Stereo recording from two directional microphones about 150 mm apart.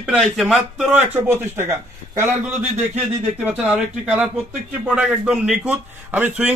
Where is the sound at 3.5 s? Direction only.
10° right (ahead or behind).